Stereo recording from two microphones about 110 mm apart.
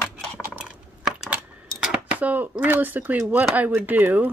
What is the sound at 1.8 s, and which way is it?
Speech, 15° right (ahead or behind).